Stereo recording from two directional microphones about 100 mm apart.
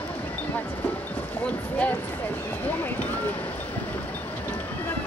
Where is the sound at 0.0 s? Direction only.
15° left (ahead or behind).